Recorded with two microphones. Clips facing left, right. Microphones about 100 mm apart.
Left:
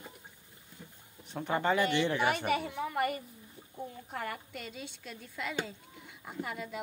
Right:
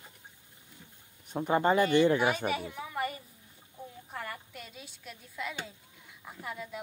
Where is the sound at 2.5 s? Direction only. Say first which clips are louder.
Left 3 dB; 55° left (ahead or behind).